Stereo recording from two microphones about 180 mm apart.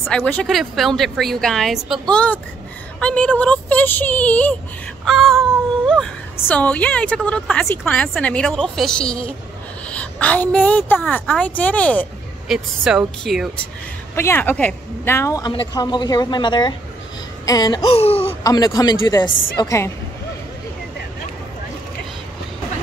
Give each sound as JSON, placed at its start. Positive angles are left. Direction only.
{"t": 0.0, "sound": "a woman's voice", "side_deg": 5}
{"t": 14.1, "sound": "speech", "side_deg": 15}
{"t": 17.9, "sound": "speech", "side_deg": 35}
{"t": 18.4, "sound": "speech", "side_deg": 20}